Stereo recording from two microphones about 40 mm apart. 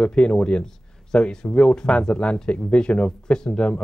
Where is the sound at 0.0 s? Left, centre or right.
Left.